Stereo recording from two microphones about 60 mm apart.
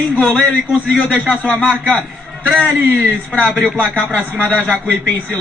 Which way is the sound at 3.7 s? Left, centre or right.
Left.